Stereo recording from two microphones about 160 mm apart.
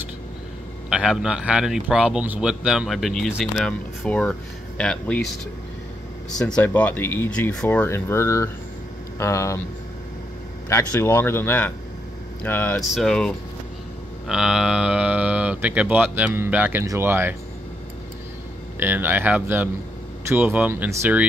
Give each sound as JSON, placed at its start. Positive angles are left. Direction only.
{"t": 0.8, "sound": "a man's voice", "side_deg": -5}
{"t": 6.3, "sound": "speech", "side_deg": 10}
{"t": 10.7, "sound": "a man's voice", "side_deg": 15}
{"t": 18.8, "sound": "speech", "side_deg": -10}